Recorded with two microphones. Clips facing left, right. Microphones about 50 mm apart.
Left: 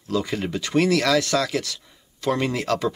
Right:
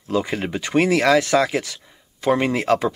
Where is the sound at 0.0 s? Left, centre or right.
Right.